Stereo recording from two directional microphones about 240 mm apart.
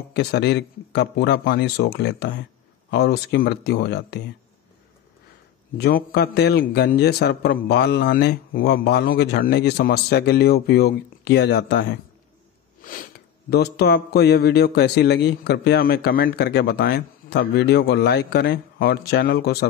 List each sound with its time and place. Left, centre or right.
0.1 s speech: left
5.8 s speech: left
12.8 s speech: left